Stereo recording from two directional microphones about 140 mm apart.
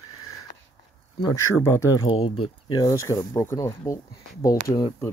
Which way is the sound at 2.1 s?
40° left (ahead or behind).